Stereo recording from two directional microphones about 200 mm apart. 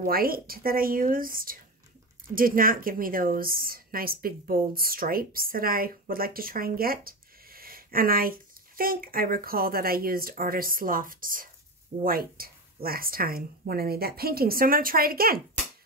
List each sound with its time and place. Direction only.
0.0 s a woman's voice: 45° right (ahead or behind)